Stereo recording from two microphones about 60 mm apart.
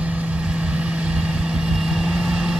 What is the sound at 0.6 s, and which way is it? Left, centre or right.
Vehicle, right.